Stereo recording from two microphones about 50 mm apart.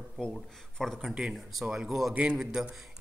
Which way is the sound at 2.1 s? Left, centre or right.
Right.